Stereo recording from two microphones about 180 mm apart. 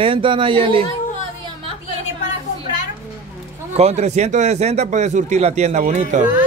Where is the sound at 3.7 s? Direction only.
35° right (ahead or behind).